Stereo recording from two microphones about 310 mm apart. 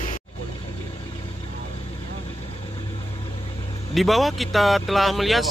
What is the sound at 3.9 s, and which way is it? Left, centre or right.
Speech, centre.